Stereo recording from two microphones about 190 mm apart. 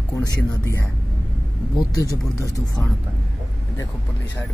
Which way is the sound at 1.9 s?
20° left (ahead or behind).